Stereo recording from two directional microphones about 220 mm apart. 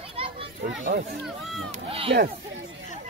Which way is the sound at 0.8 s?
45° right (ahead or behind).